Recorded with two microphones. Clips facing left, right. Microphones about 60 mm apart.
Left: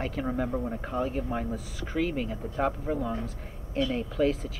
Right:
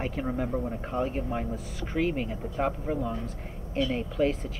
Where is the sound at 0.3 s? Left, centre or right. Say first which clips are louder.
Even; centre.